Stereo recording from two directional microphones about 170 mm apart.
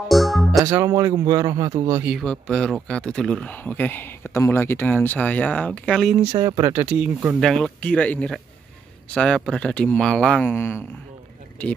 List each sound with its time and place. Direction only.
0.1 s music: centre (ahead or behind)
0.6 s a man's voice: 20° right (ahead or behind)
2.0 s speech: centre (ahead or behind)
6.1 s speech: 20° right (ahead or behind); by 10.8 s 10° left (ahead or behind)